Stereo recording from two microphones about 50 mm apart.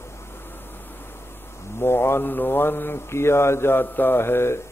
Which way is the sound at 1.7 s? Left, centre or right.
Left.